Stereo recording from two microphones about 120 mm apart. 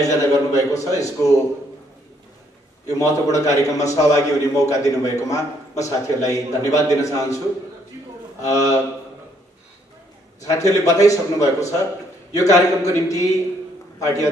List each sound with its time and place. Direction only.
0.0 s a man's voice: 25° left (ahead or behind)
2.9 s a man's voice: 25° left (ahead or behind)
8.5 s a man's voice: 25° left (ahead or behind)
10.4 s a man's voice: 25° left (ahead or behind)